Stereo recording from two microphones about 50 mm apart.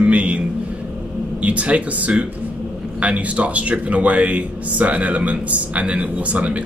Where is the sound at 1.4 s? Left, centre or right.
Right.